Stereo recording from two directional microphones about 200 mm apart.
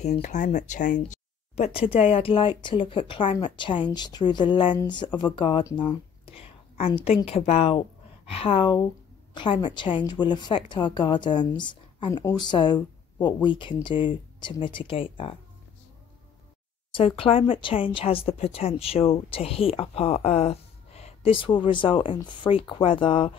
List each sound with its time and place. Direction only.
0.0 s a woman's voice: 35° left (ahead or behind)
16.9 s speech: 25° left (ahead or behind)